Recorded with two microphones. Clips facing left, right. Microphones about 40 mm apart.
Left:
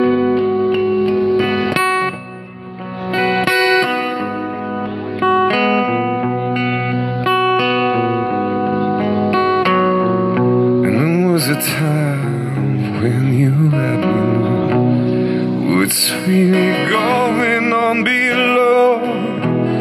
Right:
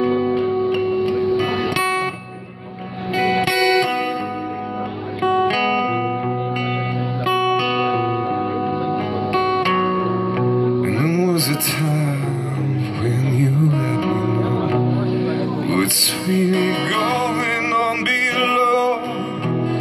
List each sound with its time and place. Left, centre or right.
0.4 s music: centre
3.2 s music: left
5.2 s music: left
7.2 s music: centre
9.3 s music: left
9.8 s music: centre
10.6 s music: left
15.7 s music: left